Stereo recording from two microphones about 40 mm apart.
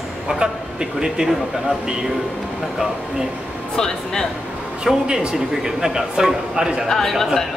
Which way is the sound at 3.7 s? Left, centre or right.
Centre.